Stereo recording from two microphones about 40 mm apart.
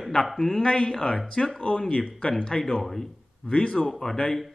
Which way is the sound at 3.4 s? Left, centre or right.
Left.